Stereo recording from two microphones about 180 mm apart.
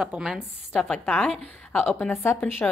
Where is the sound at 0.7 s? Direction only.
5° left (ahead or behind).